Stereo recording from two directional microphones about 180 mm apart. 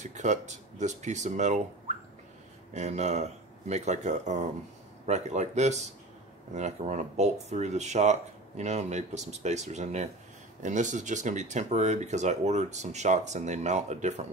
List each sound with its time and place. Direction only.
0.0 s speech: 40° right (ahead or behind)